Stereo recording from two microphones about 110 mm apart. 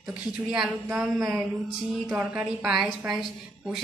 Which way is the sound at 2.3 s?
5° right (ahead or behind).